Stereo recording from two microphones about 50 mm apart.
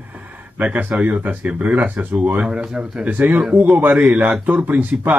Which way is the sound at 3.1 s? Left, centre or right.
Right.